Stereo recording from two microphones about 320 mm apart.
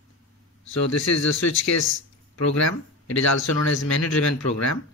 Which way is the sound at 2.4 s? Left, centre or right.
Left.